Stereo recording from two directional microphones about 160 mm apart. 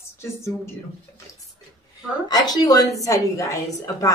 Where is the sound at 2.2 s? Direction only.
25° left (ahead or behind).